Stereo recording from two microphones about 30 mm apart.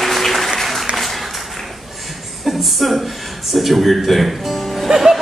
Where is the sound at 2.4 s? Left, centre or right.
Centre.